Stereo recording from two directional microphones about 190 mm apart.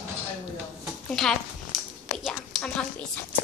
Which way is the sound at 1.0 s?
5° left (ahead or behind).